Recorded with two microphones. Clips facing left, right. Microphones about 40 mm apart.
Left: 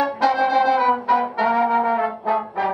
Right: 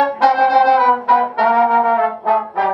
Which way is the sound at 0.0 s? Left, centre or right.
Right.